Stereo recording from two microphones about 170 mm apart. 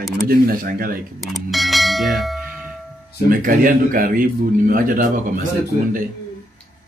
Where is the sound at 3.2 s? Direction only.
55° right (ahead or behind).